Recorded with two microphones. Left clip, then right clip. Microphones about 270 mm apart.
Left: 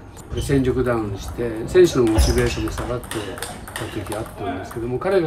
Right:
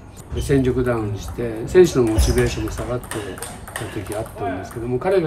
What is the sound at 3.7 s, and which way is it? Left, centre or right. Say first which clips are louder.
Speech: right 2 dB; centre.